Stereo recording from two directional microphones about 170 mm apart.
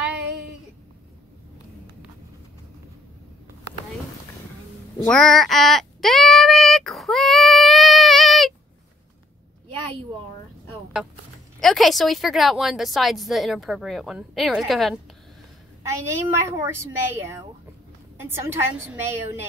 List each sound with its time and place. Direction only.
5.0 s child singing: 5° left (ahead or behind)
11.6 s a woman's voice: centre (ahead or behind)
15.8 s a woman's voice: 15° right (ahead or behind)